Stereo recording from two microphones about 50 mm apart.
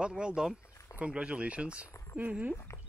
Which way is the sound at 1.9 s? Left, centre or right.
Left.